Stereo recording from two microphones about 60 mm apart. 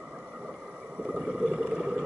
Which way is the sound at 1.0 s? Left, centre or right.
Centre.